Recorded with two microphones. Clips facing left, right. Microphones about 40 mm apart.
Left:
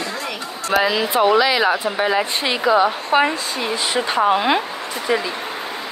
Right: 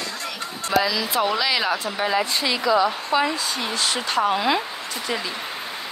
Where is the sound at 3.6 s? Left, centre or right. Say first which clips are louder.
Left 7 dB; centre.